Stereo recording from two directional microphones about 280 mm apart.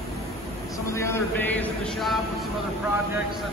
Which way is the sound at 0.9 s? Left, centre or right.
Centre.